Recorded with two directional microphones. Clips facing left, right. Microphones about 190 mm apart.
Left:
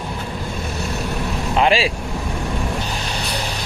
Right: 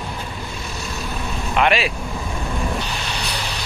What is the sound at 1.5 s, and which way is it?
Speech, 30° left (ahead or behind).